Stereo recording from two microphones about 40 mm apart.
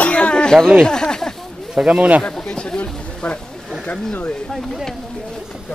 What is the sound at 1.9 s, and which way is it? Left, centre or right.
Speech, right.